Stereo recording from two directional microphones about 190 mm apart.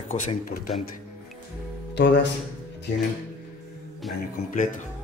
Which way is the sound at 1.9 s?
65° left (ahead or behind).